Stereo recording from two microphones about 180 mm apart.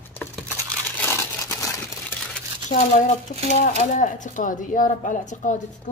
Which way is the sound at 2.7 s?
45° left (ahead or behind).